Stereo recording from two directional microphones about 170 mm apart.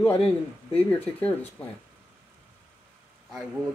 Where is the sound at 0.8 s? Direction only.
10° left (ahead or behind).